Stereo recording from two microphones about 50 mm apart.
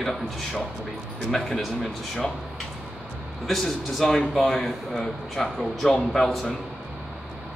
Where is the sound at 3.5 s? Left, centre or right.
Centre.